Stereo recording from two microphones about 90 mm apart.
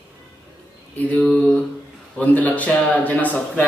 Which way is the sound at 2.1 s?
15° left (ahead or behind).